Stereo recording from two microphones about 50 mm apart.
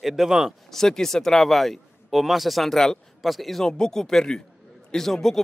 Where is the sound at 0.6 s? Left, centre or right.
Centre.